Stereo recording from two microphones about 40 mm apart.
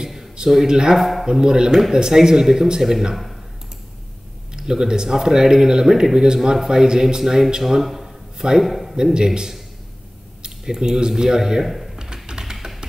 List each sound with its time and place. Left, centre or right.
0.4 s speech: centre
0.9 s speech: centre
1.2 s speech: centre
4.6 s speech: centre
8.9 s speech: centre
11.6 s a sound: centre
12.0 s typing: centre